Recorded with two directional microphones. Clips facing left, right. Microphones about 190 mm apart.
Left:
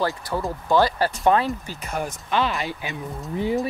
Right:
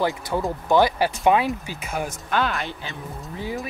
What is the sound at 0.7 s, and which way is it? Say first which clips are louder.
Speech: right 1 dB; 15° right (ahead or behind).